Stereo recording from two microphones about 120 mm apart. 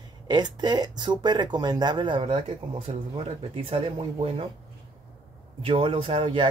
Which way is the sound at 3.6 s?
50° right (ahead or behind).